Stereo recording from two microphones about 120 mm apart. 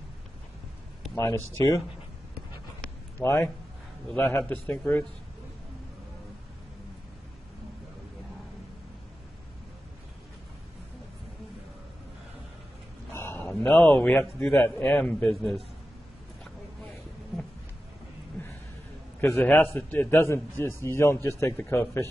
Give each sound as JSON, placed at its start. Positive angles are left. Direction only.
{"t": 1.1, "sound": "speech", "side_deg": 25}
{"t": 3.2, "sound": "a man's voice", "side_deg": 20}
{"t": 13.1, "sound": "a man's voice", "side_deg": 20}
{"t": 15.3, "sound": "a man's voice", "side_deg": 0}
{"t": 19.2, "sound": "a man's voice", "side_deg": 20}